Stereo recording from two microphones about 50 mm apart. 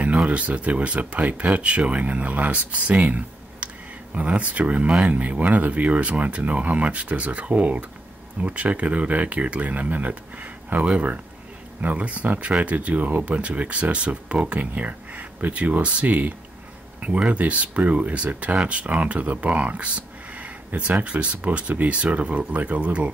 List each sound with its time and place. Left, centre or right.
0.3 s speech: right